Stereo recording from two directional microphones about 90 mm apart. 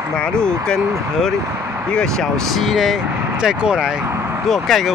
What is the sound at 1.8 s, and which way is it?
Speech, 10° left (ahead or behind).